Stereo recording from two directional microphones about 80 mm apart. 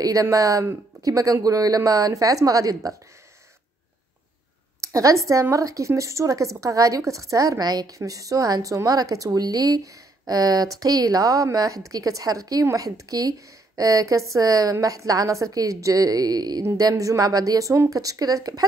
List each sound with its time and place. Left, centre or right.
0.0 s a woman's voice: right
4.8 s a woman's voice: right
16.6 s a woman's voice: right